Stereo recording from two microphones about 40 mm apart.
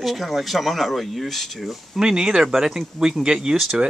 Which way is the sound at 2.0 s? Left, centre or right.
Centre.